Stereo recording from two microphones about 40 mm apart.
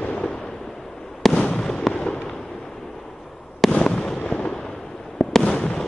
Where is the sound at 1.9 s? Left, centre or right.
Left.